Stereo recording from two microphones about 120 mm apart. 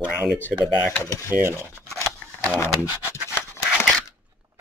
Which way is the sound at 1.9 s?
25° right (ahead or behind).